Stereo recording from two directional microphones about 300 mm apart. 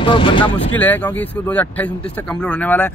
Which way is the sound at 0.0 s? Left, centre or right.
Centre.